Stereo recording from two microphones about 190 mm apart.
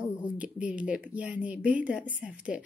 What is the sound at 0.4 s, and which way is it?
A woman's voice, 5° right (ahead or behind).